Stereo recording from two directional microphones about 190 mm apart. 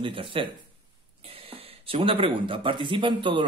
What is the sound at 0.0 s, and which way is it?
Speech, 25° right (ahead or behind).